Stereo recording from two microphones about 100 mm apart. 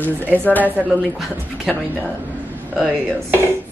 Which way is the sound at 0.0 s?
15° left (ahead or behind).